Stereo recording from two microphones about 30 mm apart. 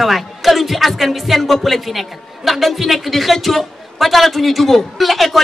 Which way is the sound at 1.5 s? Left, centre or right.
Centre.